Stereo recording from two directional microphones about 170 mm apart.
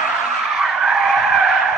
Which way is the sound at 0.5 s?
Centre (ahead or behind).